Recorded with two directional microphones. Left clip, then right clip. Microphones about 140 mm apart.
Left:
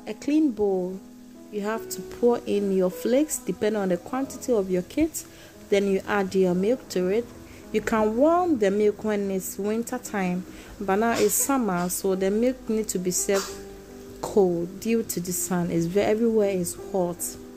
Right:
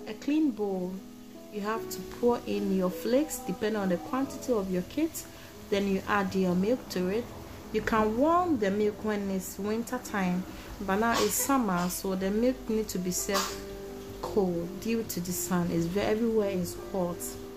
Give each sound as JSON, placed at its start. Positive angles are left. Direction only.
{"t": 0.0, "sound": "speech", "side_deg": 45}
{"t": 1.6, "sound": "speech", "side_deg": 40}